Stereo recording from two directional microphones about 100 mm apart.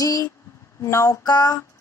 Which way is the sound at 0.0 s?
35° left (ahead or behind).